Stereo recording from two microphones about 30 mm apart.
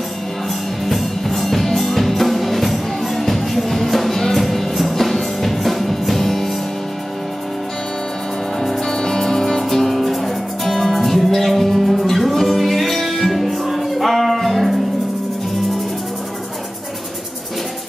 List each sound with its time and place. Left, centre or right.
0.8 s music: centre
8.5 s music: centre